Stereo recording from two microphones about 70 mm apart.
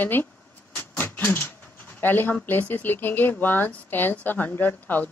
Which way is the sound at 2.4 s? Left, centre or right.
Left.